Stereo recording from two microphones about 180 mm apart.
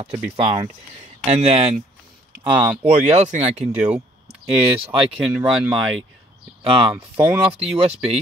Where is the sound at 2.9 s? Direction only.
40° right (ahead or behind).